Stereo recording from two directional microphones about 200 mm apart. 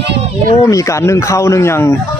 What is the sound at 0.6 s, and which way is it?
Speech, 15° left (ahead or behind).